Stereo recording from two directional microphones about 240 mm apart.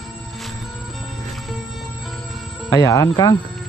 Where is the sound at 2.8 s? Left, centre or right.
Centre.